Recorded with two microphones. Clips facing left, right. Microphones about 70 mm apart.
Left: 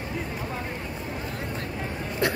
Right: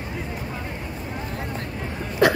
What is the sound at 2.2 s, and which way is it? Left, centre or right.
Hiccup, right.